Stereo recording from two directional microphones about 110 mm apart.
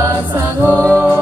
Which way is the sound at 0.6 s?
15° left (ahead or behind).